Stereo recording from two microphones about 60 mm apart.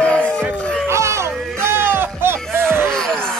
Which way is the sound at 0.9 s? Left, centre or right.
Right.